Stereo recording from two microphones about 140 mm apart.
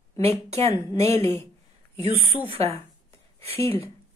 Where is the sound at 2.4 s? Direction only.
45° right (ahead or behind).